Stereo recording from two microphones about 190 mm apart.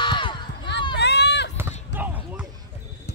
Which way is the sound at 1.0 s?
60° left (ahead or behind).